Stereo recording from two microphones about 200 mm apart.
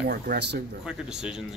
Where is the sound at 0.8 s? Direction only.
5° right (ahead or behind).